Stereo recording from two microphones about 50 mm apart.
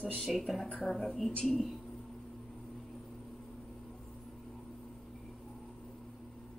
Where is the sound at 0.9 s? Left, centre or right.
Centre.